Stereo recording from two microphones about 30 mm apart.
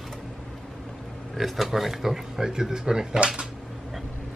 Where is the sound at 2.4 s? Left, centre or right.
Centre.